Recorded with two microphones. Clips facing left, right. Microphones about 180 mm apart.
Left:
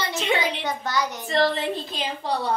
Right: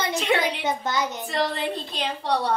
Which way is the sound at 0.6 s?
20° right (ahead or behind).